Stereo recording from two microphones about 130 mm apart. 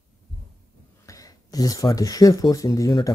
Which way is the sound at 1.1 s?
30° left (ahead or behind).